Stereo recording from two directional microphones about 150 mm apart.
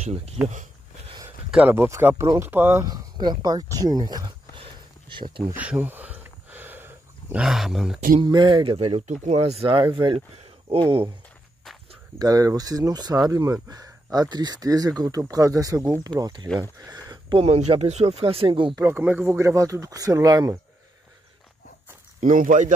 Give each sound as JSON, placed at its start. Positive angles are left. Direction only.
{"t": 0.0, "sound": "speech", "side_deg": -45}
{"t": 0.5, "sound": "a sound", "side_deg": -55}
{"t": 1.5, "sound": "speech", "side_deg": -10}
{"t": 2.8, "sound": "speech", "side_deg": -25}
{"t": 5.5, "sound": "a sound", "side_deg": -10}
{"t": 8.2, "sound": "speech", "side_deg": -30}
{"t": 12.2, "sound": "speech", "side_deg": -25}
{"t": 18.8, "sound": "speech", "side_deg": -15}
{"t": 22.2, "sound": "speech", "side_deg": -60}